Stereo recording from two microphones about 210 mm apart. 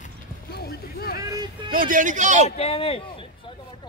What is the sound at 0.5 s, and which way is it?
Music, 45° left (ahead or behind).